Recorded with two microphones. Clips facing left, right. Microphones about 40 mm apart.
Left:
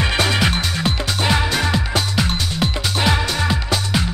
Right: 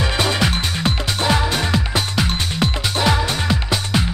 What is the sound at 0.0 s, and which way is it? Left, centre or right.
Music, left.